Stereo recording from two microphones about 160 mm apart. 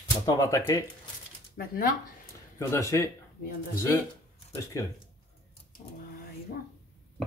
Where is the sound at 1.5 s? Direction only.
65° left (ahead or behind).